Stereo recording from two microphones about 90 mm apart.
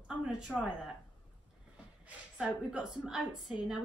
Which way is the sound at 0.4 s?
5° right (ahead or behind).